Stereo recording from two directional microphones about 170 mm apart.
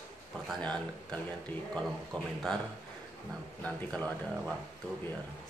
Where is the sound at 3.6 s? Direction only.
5° left (ahead or behind).